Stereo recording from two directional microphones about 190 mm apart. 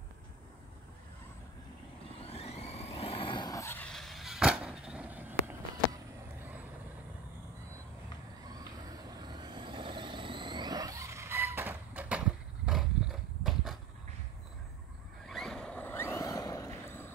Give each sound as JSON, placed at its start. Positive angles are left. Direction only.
{"t": 2.2, "sound": "vehicle", "side_deg": 30}
{"t": 8.5, "sound": "vehicle", "side_deg": -20}
{"t": 15.2, "sound": "vehicle", "side_deg": 0}